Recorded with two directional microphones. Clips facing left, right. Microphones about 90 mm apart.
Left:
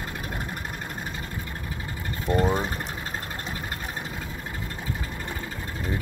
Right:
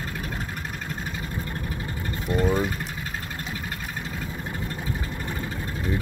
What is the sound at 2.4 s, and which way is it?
Speech, 25° left (ahead or behind).